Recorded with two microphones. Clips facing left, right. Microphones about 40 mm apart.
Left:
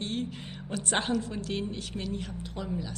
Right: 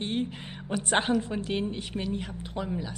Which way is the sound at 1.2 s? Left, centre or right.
Centre.